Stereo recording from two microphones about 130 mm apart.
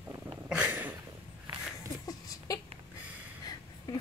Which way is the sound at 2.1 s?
30° left (ahead or behind).